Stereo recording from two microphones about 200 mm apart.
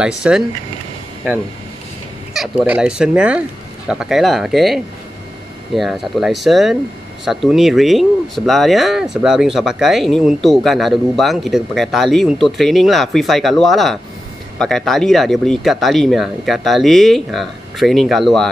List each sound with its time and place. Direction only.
0.2 s speech: 5° right (ahead or behind)
2.3 s speech: 5° right (ahead or behind)